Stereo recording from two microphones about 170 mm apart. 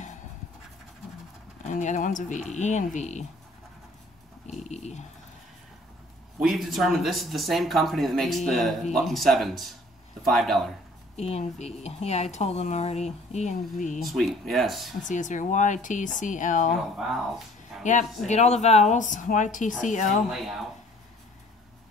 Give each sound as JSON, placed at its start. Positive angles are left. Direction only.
{"t": 1.6, "sound": "speech", "side_deg": 45}
{"t": 4.6, "sound": "dog", "side_deg": 40}
{"t": 6.4, "sound": "speech", "side_deg": 0}
{"t": 11.1, "sound": "speech", "side_deg": 40}
{"t": 14.0, "sound": "speech", "side_deg": 0}
{"t": 15.0, "sound": "speech", "side_deg": 50}
{"t": 17.8, "sound": "speech", "side_deg": 45}
{"t": 20.2, "sound": "speech", "side_deg": 0}